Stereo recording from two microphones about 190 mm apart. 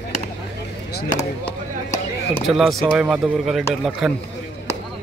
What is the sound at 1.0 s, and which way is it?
Chop, 20° left (ahead or behind).